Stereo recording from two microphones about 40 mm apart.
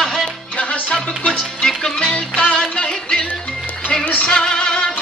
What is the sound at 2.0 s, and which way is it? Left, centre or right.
Music, left.